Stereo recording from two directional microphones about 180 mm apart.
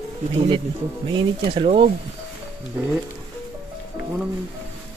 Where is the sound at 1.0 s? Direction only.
25° right (ahead or behind).